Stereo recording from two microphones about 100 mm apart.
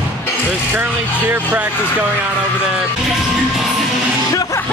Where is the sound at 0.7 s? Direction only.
15° right (ahead or behind).